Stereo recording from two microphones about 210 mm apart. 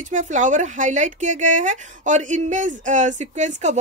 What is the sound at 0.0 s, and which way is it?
Speech, 35° right (ahead or behind).